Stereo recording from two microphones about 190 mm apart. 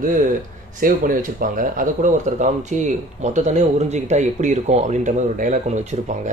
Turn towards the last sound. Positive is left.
turn(degrees=-35)  # may be behind; listen again after turning